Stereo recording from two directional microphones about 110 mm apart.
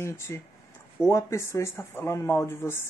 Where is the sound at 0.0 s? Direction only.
25° left (ahead or behind).